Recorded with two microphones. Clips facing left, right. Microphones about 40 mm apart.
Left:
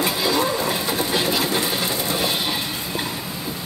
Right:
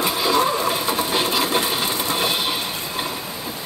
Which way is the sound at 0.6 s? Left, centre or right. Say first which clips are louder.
Right 2 dB; centre.